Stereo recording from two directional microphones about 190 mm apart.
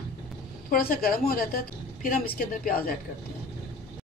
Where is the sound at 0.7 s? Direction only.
50° left (ahead or behind).